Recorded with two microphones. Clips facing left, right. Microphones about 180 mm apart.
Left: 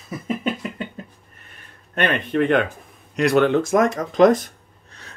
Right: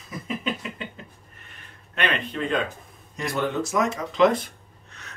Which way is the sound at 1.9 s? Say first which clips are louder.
Left 6 dB; 55° left (ahead or behind).